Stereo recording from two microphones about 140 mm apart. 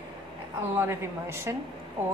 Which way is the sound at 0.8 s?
20° right (ahead or behind).